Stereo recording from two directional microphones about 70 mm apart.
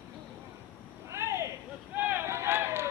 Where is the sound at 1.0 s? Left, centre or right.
Right.